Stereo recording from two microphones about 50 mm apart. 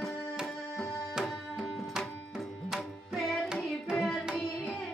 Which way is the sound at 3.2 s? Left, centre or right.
Centre.